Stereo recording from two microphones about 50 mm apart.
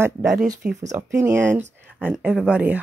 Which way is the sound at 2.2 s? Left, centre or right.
Right.